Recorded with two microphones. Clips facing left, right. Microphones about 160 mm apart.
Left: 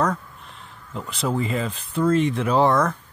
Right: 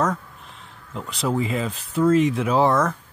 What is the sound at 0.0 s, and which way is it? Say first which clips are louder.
Speech: even; centre (ahead or behind).